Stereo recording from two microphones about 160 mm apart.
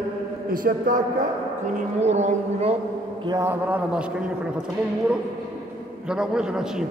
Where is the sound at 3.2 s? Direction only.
25° right (ahead or behind).